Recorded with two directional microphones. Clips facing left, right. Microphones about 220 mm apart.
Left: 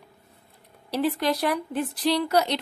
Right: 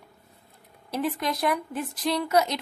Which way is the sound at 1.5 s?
35° left (ahead or behind).